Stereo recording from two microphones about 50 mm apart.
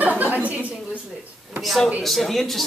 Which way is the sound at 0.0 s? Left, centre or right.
Right.